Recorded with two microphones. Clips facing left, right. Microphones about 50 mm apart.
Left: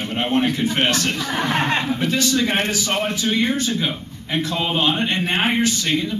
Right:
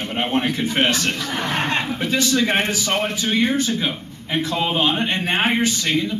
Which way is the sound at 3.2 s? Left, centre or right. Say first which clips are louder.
Right 1 dB; centre.